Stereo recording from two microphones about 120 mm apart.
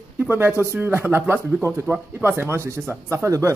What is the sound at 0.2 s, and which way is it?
A man's voice, 15° right (ahead or behind).